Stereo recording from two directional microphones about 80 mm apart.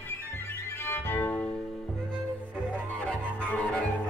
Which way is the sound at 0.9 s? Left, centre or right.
Left.